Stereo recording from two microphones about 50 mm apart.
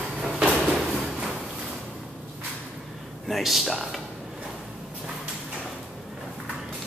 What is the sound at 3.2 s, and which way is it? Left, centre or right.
Speech, centre.